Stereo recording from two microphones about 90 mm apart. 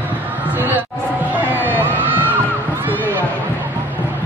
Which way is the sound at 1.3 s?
20° right (ahead or behind).